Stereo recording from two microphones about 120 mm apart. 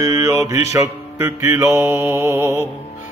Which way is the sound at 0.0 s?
25° right (ahead or behind).